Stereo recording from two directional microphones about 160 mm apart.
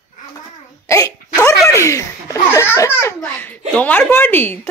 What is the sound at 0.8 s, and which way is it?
A child's voice, 20° left (ahead or behind).